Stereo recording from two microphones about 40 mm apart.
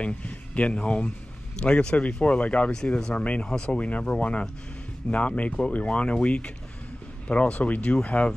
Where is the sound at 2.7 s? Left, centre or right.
Centre.